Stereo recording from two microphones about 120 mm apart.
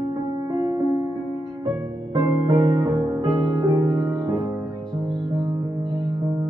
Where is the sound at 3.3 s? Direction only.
25° right (ahead or behind).